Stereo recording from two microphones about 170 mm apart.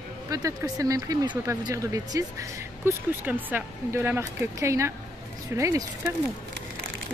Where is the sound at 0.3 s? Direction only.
20° right (ahead or behind).